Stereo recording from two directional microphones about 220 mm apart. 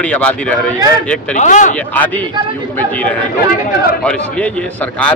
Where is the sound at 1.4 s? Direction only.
35° left (ahead or behind).